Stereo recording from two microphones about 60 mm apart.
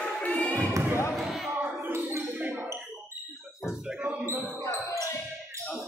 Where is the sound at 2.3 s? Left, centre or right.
Right.